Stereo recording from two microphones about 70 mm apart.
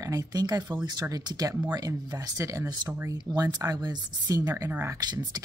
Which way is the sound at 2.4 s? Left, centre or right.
Right.